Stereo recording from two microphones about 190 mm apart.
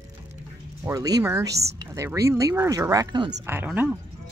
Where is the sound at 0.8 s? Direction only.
20° right (ahead or behind).